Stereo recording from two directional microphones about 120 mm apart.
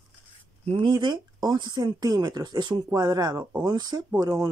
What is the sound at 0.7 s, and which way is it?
Speech, 45° right (ahead or behind).